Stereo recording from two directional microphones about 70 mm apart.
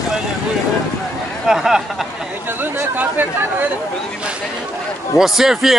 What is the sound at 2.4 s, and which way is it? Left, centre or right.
Speech, right.